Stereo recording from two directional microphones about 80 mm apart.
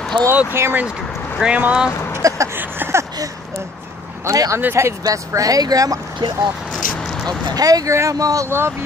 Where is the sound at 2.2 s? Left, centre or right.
Right.